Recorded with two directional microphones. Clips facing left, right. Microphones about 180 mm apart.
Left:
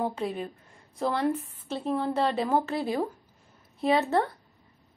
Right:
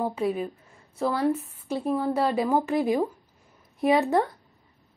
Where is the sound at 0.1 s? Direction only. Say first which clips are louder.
Right 5 dB; 10° right (ahead or behind).